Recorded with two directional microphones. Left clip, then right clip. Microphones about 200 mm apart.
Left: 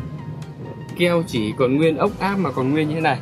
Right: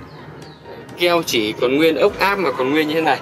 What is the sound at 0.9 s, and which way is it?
A man's voice, 15° left (ahead or behind).